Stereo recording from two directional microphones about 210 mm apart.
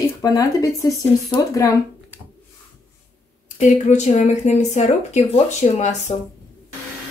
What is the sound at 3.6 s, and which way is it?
Speech, 35° left (ahead or behind).